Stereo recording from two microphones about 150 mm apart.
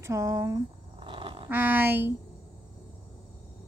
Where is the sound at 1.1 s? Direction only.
35° right (ahead or behind).